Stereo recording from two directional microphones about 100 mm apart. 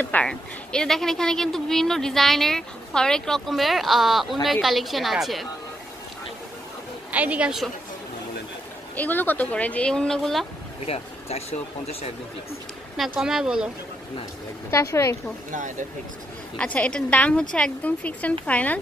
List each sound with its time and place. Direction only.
0.0 s speech: 15° left (ahead or behind)
7.1 s a woman's voice: 15° right (ahead or behind)
8.9 s a woman's voice: 15° left (ahead or behind)
10.9 s speech: 90° left
12.9 s speech: 5° right (ahead or behind)
14.7 s speech: 30° left (ahead or behind)
16.5 s a woman's voice: 10° left (ahead or behind)